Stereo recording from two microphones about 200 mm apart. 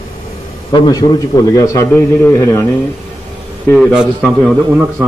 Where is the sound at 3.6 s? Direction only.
5° left (ahead or behind).